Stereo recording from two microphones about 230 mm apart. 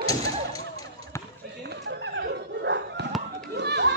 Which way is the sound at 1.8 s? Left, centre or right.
Right.